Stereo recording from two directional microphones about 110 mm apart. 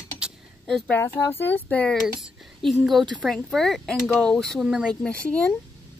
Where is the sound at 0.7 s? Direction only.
5° left (ahead or behind).